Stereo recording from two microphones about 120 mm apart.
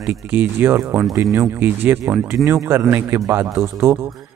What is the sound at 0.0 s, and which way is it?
A man's voice, 15° right (ahead or behind).